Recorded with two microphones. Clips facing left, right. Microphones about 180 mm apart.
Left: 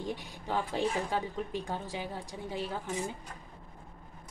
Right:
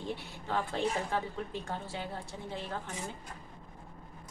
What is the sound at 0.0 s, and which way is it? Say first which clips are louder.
Speech: left 1 dB; 15° left (ahead or behind).